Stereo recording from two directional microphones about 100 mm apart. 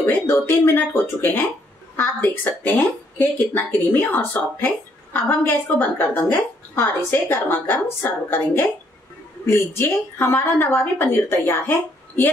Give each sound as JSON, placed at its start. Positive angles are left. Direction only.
{"t": 0.0, "sound": "speech", "side_deg": 25}